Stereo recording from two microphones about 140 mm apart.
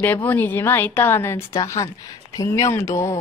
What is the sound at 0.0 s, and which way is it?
A woman's voice, 10° left (ahead or behind).